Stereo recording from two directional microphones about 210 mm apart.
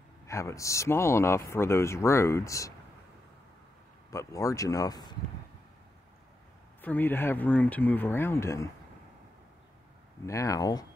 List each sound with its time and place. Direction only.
0.3 s speech: 15° left (ahead or behind)
4.1 s speech: 15° left (ahead or behind)
6.8 s speech: 10° left (ahead or behind)
10.2 s speech: 15° left (ahead or behind)